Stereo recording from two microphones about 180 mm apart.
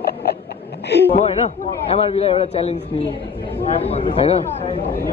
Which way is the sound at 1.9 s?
35° left (ahead or behind).